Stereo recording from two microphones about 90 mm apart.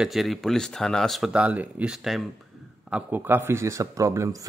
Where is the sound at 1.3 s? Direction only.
15° right (ahead or behind).